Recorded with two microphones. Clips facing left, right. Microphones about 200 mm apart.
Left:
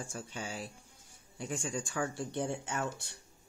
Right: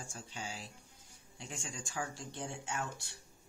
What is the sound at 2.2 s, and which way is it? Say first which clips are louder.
Speech: left 8 dB; 60° left (ahead or behind).